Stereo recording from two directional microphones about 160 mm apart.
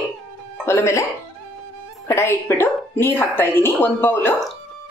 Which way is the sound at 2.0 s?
15° left (ahead or behind).